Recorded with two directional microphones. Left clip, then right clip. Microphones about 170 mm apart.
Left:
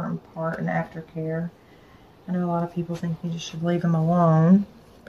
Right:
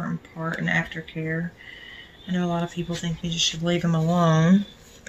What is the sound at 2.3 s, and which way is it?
Speech, 15° left (ahead or behind).